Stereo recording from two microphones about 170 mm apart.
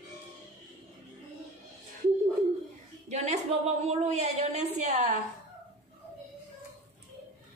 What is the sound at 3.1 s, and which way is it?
A woman's voice, 40° right (ahead or behind).